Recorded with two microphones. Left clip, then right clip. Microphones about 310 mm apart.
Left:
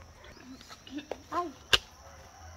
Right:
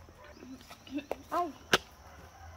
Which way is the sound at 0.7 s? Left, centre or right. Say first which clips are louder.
Right 2 dB; right.